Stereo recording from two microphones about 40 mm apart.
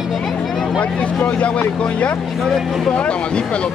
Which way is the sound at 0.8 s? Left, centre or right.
Left.